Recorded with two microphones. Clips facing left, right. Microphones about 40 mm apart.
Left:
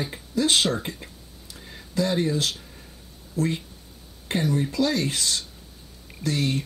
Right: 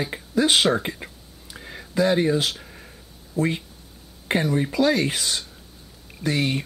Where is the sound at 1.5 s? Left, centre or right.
Right.